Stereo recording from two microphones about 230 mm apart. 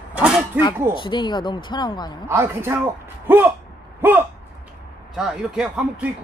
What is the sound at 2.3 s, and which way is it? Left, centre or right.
Speech, centre.